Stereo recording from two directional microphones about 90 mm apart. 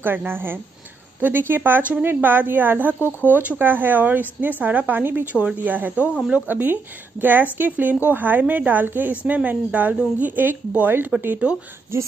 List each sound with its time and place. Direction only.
0.0 s a woman's voice: 20° right (ahead or behind)